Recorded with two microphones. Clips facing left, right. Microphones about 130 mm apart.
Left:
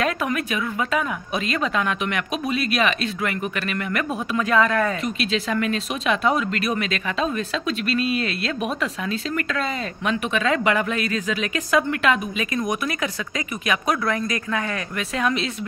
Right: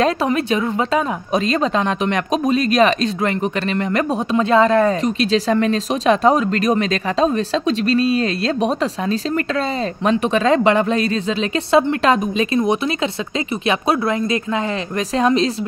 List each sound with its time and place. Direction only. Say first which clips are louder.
0.0 s a woman's voice: right 6 dB; 30° right (ahead or behind)